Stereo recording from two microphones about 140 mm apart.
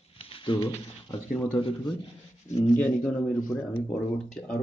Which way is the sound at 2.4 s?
60° left (ahead or behind).